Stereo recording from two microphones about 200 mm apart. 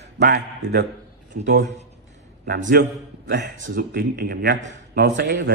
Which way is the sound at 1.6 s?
35° right (ahead or behind).